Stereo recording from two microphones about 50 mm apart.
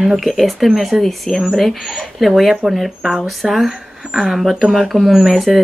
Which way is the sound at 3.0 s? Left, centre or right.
Centre.